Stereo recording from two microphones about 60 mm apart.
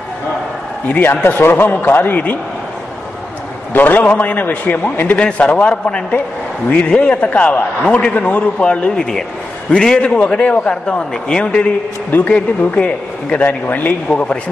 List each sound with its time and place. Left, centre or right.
0.8 s a man's voice: left
3.7 s a man's voice: left
14.0 s a man's voice: centre